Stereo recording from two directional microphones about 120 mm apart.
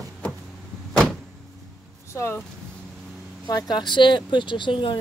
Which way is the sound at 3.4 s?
35° left (ahead or behind).